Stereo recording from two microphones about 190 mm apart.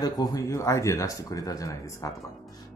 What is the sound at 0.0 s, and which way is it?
Speech, 20° left (ahead or behind).